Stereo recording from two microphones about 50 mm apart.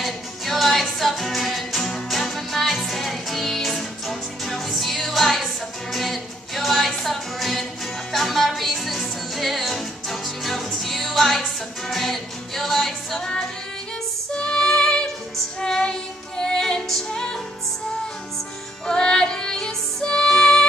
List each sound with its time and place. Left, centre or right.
0.0 s music: centre
14.3 s music: centre
18.9 s music: centre